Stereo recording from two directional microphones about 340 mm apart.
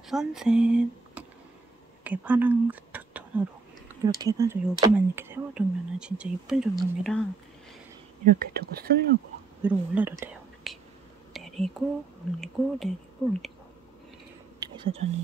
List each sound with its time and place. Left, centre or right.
0.1 s speech: centre
8.3 s speech: right
9.6 s speech: centre
10.2 s whispering: centre
12.4 s speech: centre
14.6 s a sound: centre